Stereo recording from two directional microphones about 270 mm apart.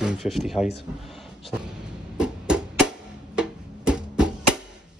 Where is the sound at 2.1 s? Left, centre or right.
Centre.